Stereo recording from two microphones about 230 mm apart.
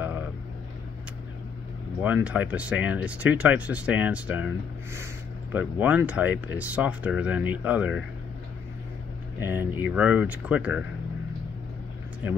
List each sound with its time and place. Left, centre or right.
0.0 s vehicle: centre
2.0 s speech: centre
9.4 s speech: centre